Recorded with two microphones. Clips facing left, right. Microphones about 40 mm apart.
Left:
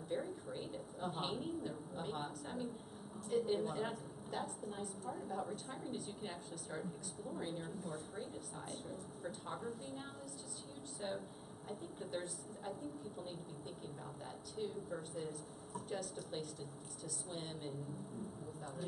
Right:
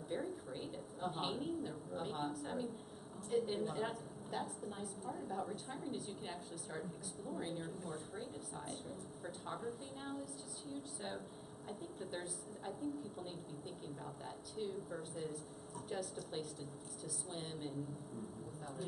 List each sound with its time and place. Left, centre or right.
0.1 s a woman's voice: centre
14.6 s a woman's voice: centre